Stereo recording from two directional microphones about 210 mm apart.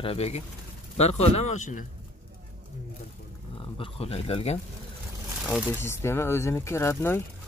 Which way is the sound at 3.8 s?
25° left (ahead or behind).